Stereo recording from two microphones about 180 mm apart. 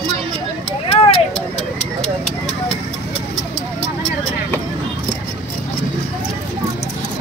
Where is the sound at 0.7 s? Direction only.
30° left (ahead or behind).